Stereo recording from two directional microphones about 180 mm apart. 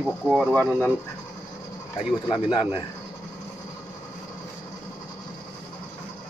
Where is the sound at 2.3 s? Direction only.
25° left (ahead or behind).